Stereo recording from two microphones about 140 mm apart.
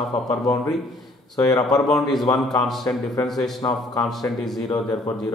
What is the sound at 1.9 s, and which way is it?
Speech, 5° left (ahead or behind).